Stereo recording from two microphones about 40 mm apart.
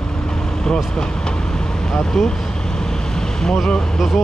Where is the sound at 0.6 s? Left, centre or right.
Centre.